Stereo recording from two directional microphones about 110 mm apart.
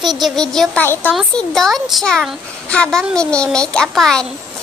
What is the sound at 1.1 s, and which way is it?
A child's voice, centre (ahead or behind).